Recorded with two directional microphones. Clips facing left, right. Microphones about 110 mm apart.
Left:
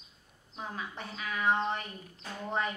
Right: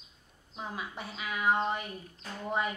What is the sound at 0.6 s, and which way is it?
A woman's voice, 10° right (ahead or behind).